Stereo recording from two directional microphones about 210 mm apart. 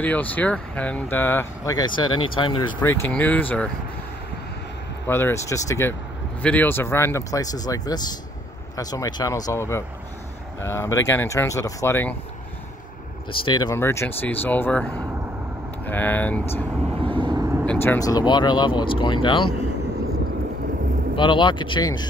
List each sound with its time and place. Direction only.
0.0 s speech: 5° left (ahead or behind)
2.0 s speech: 90° left
2.3 s speech: 25° left (ahead or behind)
2.8 s speech: 10° left (ahead or behind)
5.0 s speech: 10° left (ahead or behind)
13.3 s speech: 25° left (ahead or behind)
16.8 s vehicle: 25° right (ahead or behind)
17.6 s speech: 10° left (ahead or behind)
21.2 s speech: 20° left (ahead or behind)